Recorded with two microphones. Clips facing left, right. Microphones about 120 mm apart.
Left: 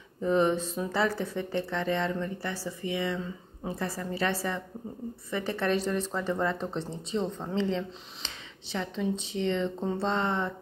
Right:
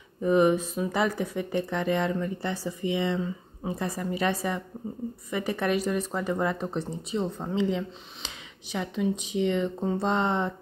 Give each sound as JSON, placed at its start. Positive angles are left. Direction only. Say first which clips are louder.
{"t": 0.2, "sound": "speech", "louder": "right 3 dB", "side_deg": -10}